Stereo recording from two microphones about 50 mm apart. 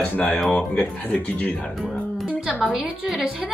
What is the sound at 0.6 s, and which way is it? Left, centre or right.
Speech, left.